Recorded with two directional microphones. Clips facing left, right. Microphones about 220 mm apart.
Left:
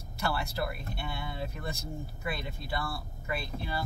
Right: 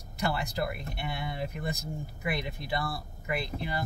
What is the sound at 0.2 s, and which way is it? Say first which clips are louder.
Speech: right 2 dB; 15° right (ahead or behind).